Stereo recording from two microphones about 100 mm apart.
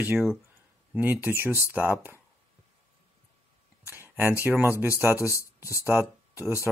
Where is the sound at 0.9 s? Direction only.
20° right (ahead or behind).